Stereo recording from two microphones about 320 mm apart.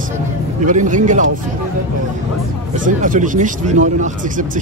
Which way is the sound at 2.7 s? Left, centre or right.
Right.